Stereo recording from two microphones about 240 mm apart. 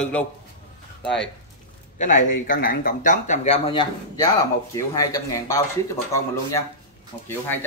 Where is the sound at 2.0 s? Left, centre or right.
Left; by 5.6 s centre.